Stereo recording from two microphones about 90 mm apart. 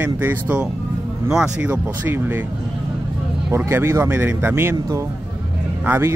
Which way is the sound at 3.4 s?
25° right (ahead or behind).